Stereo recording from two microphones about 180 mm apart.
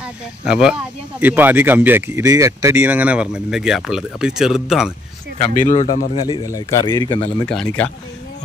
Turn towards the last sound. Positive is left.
turn(degrees=5)  # may be behind; listen again after turning